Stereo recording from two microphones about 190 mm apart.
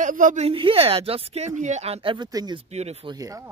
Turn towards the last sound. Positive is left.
turn(degrees=-20)  # may be behind; listen again after turning